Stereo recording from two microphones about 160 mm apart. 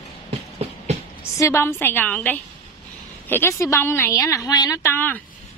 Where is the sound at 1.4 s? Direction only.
15° left (ahead or behind).